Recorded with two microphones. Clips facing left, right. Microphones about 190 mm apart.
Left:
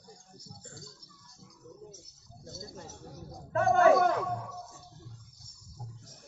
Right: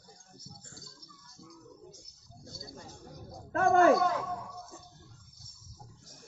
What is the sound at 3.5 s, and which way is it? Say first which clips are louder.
Speech: even; 50° right (ahead or behind).